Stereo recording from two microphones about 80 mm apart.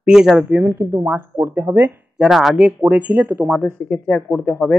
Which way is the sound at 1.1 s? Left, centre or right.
Right.